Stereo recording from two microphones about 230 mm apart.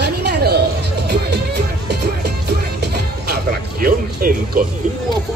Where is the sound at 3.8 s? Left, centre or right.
Right.